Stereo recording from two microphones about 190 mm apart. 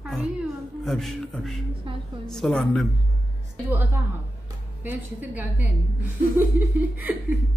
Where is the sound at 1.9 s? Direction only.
25° right (ahead or behind).